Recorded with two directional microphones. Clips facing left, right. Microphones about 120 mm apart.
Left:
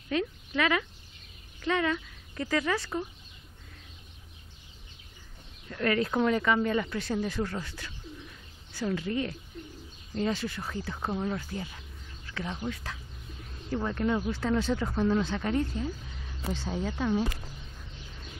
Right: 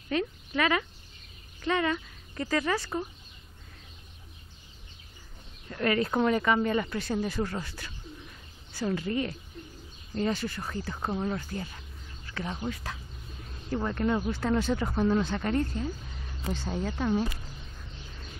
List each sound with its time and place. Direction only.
0.1 s a woman's voice: centre (ahead or behind)
5.7 s speech: 15° right (ahead or behind)
6.2 s speech: 5° right (ahead or behind)
8.9 s speech: centre (ahead or behind)
12.5 s speech: 15° right (ahead or behind)
13.8 s speech: centre (ahead or behind)
15.5 s speech: 10° left (ahead or behind)